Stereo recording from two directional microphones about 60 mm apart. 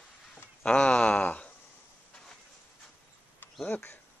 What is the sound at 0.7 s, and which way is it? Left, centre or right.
Speech, centre.